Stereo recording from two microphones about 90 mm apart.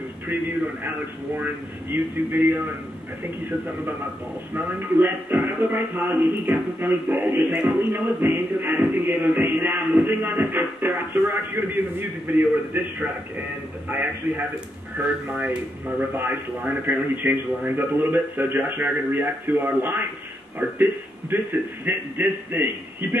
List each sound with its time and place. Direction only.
0.8 s music: 20° right (ahead or behind)
4.6 s music: 25° right (ahead or behind)
15.0 s speech: 15° right (ahead or behind)
16.2 s music: 20° right (ahead or behind)